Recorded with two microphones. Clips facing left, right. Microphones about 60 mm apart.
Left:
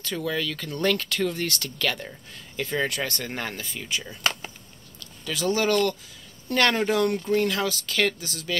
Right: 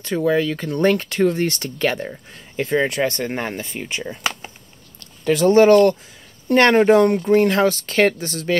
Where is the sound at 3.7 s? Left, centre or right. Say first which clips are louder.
Right 5 dB; right.